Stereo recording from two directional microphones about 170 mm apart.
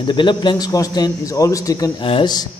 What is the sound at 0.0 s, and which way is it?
Speech, 25° left (ahead or behind).